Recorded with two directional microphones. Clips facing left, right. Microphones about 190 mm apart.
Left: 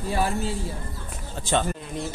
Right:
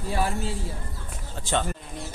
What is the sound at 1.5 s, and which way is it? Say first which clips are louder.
Speech: left 2 dB; 20° left (ahead or behind).